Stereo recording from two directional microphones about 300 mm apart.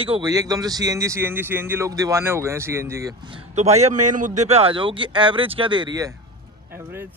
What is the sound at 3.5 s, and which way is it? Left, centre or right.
A man's voice, right.